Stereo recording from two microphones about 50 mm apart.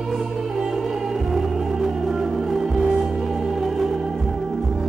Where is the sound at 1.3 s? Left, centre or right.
Centre.